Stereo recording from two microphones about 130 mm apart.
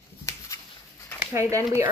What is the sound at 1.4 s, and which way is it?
Speech, 25° right (ahead or behind).